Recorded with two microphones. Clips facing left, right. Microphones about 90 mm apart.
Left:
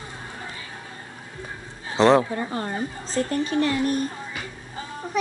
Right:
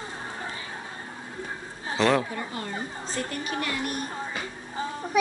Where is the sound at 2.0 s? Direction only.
35° left (ahead or behind).